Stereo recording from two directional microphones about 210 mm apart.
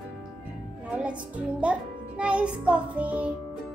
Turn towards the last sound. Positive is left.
turn(degrees=-5)  # may be behind; listen again after turning